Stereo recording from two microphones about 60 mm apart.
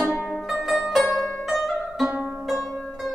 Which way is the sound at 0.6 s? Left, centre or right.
Centre.